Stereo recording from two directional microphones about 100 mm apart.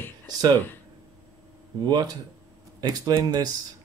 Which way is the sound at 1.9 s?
40° right (ahead or behind).